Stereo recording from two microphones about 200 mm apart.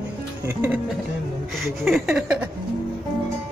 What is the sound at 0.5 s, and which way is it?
Speech, 10° right (ahead or behind).